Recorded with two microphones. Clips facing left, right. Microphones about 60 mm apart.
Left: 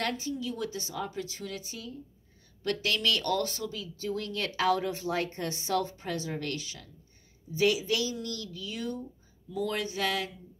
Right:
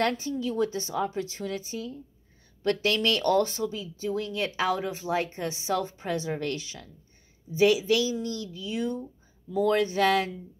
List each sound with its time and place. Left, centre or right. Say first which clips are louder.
0.0 s speech: right 5 dB; right
9.5 s speech: right 8 dB; right